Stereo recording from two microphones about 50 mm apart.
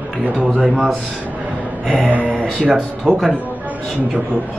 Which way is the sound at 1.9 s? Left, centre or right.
Right.